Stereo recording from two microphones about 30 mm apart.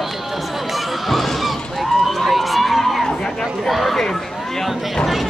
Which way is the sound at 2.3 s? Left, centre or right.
Centre.